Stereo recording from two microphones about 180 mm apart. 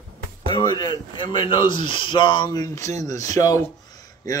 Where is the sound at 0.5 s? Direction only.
25° left (ahead or behind).